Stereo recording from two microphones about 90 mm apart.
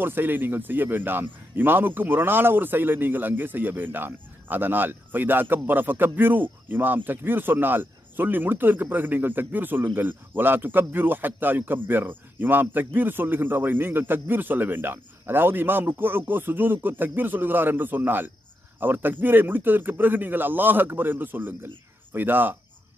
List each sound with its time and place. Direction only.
0.0 s speech: 25° right (ahead or behind)